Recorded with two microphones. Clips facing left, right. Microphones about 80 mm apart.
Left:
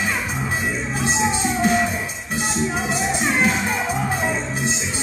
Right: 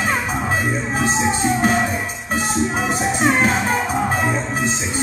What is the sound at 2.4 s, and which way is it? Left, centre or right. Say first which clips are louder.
Music: right 2 dB; right.